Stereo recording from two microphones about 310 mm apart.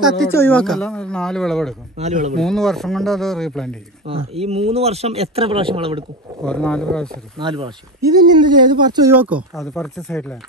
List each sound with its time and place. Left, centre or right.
0.2 s speech: centre
2.0 s speech: right
2.3 s speech: centre
4.1 s speech: centre
6.4 s speech: centre
7.3 s speech: centre